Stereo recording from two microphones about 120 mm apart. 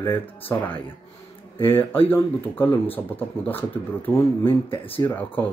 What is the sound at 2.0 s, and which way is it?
Speech, 15° left (ahead or behind).